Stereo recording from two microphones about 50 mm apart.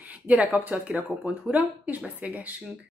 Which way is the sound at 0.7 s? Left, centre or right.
Right.